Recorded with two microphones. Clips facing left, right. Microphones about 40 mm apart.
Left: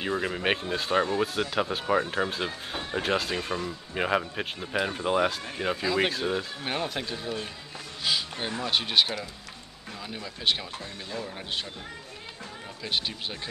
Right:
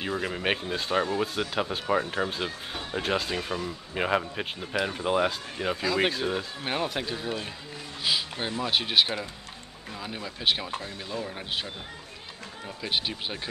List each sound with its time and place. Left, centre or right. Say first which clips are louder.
0.2 s speech: left 1 dB; centre
8.0 s a sound: right 1 dB; centre
8.6 s speech: even; centre
10.7 s speech: right 3 dB; right
11.2 s speech: right 1 dB; centre
12.8 s speech: right 1 dB; centre